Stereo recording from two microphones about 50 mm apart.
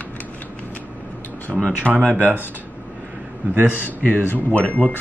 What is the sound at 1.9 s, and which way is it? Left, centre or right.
Speech, right.